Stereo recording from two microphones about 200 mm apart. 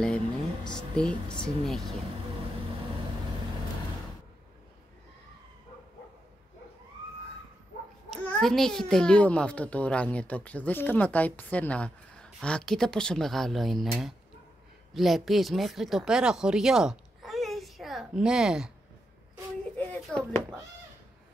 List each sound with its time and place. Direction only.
0.7 s a child's voice: 5° left (ahead or behind)
8.1 s a child's voice: centre (ahead or behind)
19.9 s speech: 5° left (ahead or behind)